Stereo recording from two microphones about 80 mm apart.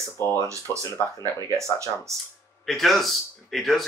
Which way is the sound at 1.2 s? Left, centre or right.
Right.